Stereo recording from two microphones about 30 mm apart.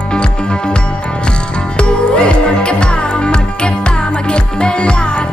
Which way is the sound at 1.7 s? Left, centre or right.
Left.